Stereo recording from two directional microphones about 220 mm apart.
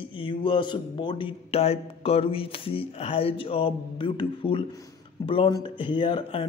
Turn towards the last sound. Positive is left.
turn(degrees=20)  # may be behind; listen again after turning